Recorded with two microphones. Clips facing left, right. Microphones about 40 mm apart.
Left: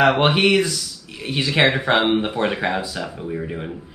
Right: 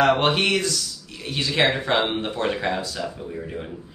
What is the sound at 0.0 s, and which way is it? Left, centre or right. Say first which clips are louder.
Speech: left 3 dB; centre.